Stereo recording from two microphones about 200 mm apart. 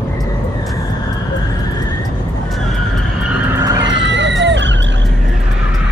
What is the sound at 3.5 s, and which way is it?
Vehicle, 15° right (ahead or behind).